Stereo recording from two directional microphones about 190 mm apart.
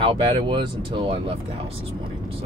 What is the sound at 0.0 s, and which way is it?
Speech, 25° right (ahead or behind).